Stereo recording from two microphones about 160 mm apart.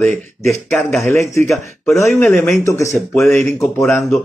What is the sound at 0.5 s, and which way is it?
Speech, centre (ahead or behind).